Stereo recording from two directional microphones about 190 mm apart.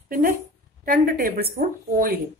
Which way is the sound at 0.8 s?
50° right (ahead or behind).